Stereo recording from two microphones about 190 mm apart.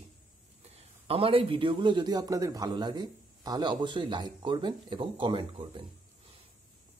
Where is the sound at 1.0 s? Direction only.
30° right (ahead or behind).